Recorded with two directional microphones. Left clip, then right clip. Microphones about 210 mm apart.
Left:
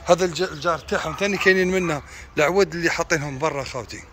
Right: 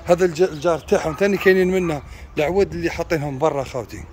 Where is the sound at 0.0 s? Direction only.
15° right (ahead or behind).